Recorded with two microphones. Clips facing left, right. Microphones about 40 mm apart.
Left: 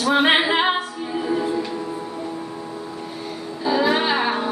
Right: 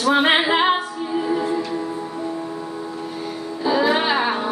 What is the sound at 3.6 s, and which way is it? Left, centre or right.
Music, centre.